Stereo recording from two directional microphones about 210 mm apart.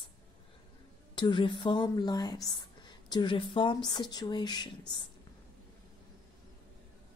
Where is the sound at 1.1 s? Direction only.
20° left (ahead or behind).